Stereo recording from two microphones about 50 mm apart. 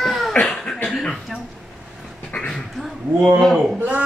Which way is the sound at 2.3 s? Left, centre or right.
Left.